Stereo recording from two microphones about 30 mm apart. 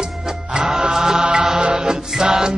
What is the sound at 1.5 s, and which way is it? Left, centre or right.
Music, right.